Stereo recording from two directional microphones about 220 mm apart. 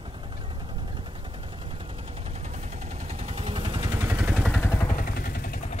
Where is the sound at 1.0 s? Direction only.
25° right (ahead or behind).